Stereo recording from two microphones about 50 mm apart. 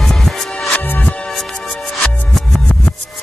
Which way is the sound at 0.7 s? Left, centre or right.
Left.